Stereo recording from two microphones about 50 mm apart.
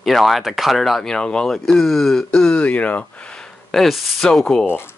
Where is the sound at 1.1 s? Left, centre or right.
Centre.